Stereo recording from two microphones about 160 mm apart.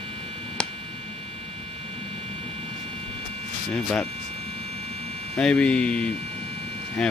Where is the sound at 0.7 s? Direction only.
35° right (ahead or behind).